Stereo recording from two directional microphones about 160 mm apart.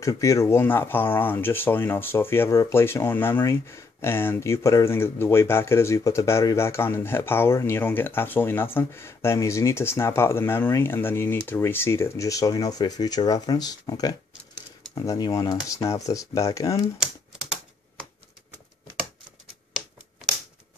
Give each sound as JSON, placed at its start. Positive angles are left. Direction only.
{"t": 0.0, "sound": "speech", "side_deg": 20}
{"t": 17.0, "sound": "typewriter", "side_deg": -5}